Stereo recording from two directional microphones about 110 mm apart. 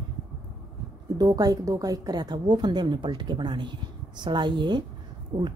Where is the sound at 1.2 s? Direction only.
35° right (ahead or behind).